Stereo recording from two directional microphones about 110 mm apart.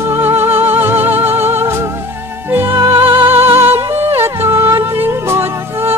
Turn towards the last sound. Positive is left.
turn(degrees=-20)  # may be behind; listen again after turning